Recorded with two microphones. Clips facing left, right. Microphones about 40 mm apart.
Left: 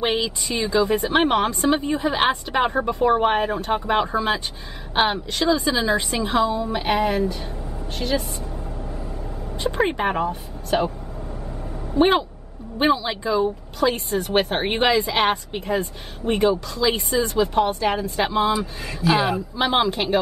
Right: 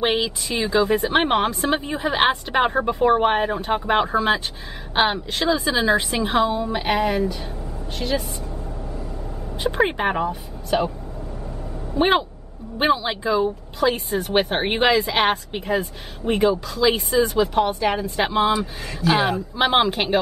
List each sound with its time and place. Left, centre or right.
0.0 s a woman's voice: centre
6.4 s speech: right
6.9 s speech: centre
9.6 s a woman's voice: centre
12.0 s a woman's voice: centre
19.5 s speech: centre